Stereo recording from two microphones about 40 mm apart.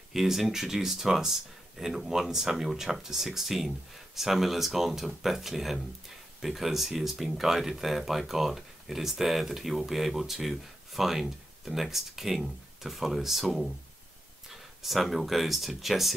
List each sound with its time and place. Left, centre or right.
0.1 s speech: centre